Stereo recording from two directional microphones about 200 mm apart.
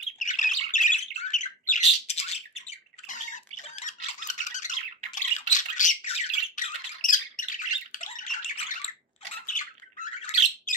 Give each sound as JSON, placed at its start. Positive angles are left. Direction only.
{"t": 0.2, "sound": "squawk", "side_deg": 40}